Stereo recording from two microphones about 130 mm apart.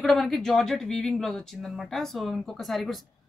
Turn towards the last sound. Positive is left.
turn(degrees=0)  # may be behind; listen again after turning